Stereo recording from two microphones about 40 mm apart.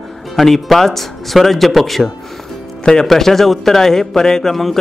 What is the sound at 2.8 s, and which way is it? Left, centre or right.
A man's voice, centre.